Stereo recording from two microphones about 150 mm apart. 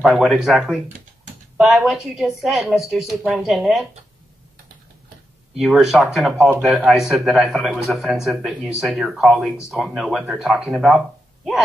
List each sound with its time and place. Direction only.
0.0 s a man's voice: centre (ahead or behind)
5.6 s a man's voice: centre (ahead or behind)